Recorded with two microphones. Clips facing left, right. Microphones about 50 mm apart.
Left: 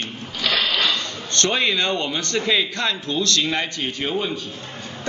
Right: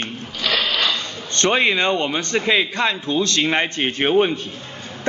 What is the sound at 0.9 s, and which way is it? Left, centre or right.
A man's voice, right.